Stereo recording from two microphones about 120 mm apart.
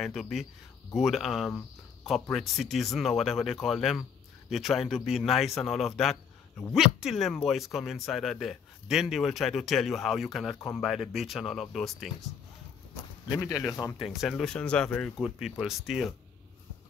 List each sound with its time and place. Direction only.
0.0 s speech: centre (ahead or behind)
13.3 s speech: 25° left (ahead or behind)
14.0 s speech: 5° right (ahead or behind)
14.3 s speech: 10° left (ahead or behind)
15.1 s speech: 5° right (ahead or behind)